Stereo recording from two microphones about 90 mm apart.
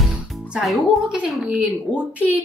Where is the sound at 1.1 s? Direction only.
5° right (ahead or behind).